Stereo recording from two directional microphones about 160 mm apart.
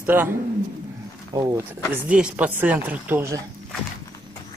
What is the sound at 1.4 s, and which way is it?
Speech, 20° right (ahead or behind).